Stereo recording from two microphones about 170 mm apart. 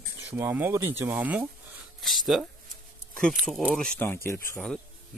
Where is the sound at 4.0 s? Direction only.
15° left (ahead or behind).